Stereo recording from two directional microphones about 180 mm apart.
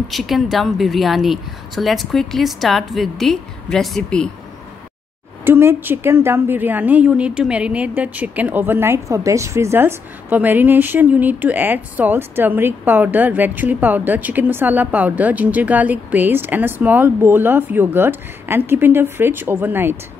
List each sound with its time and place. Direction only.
0.1 s a woman's voice: centre (ahead or behind)
5.4 s a woman's voice: 15° right (ahead or behind)